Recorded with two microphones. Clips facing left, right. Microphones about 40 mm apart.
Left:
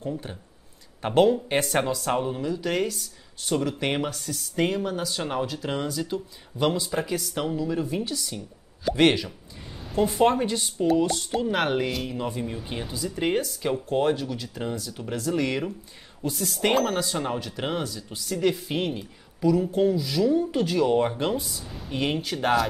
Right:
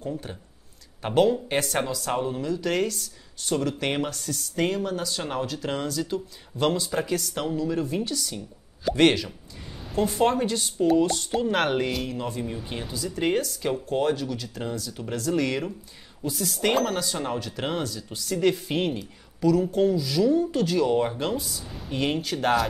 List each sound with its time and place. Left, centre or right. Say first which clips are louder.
0.0 s speech: even; centre
9.7 s a sound: left 1 dB; centre
10.3 s speech: even; centre
12.1 s speech: even; centre
18.9 s a woman's voice: right 1 dB; centre
21.6 s speech: right 1 dB; centre